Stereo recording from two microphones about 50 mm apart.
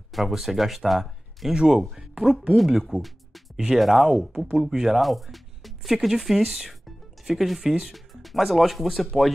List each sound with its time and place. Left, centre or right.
0.1 s speech: centre
2.5 s speech: centre
3.5 s speech: centre
3.8 s speech: centre